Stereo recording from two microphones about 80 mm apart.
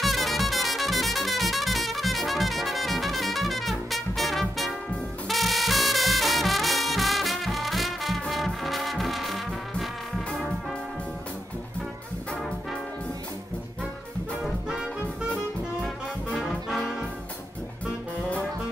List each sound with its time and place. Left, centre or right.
0.0 s music: centre
14.4 s brass instrument: centre
16.3 s brass instrument: centre